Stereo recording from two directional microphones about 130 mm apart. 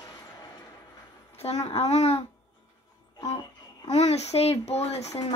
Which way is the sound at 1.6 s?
55° left (ahead or behind).